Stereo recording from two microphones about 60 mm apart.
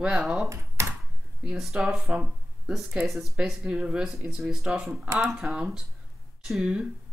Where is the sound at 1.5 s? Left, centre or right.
Centre.